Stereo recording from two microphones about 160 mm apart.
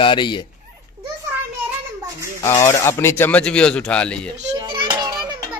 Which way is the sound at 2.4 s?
20° left (ahead or behind).